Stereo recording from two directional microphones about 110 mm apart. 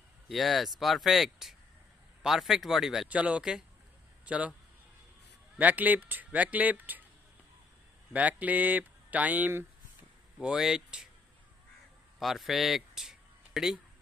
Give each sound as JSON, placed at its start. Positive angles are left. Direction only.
{"t": 0.3, "sound": "speech", "side_deg": 0}
{"t": 5.6, "sound": "speech", "side_deg": -15}
{"t": 8.1, "sound": "speech", "side_deg": -15}
{"t": 10.4, "sound": "speech", "side_deg": -5}
{"t": 12.2, "sound": "speech", "side_deg": 0}